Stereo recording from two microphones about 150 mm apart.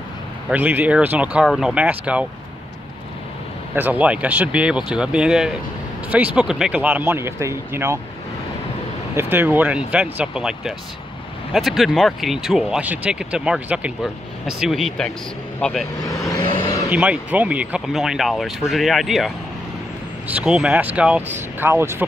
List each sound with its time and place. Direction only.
0.5 s speech: 10° right (ahead or behind)
3.7 s speech: 10° right (ahead or behind)
9.1 s speech: 15° right (ahead or behind); by 15.9 s centre (ahead or behind)
16.3 s vehicle: 20° left (ahead or behind)
16.9 s speech: 10° right (ahead or behind)